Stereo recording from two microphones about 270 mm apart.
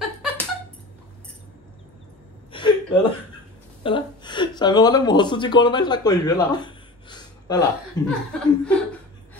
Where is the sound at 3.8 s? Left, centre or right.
Centre.